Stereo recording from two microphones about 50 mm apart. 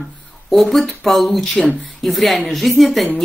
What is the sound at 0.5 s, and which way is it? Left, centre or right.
Speech, centre.